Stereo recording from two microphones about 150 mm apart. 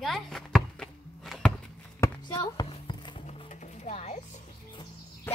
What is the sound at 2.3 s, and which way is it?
Speech, 30° left (ahead or behind).